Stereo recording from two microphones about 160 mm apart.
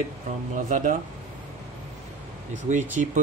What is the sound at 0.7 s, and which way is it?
Speech, 55° right (ahead or behind).